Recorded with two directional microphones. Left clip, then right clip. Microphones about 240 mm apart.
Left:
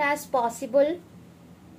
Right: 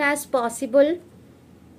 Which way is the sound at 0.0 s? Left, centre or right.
Right.